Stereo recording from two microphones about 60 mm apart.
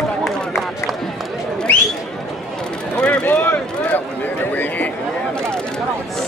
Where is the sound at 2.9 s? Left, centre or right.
Left.